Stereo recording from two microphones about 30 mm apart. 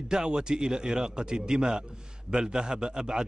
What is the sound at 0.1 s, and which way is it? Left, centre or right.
Speech, right.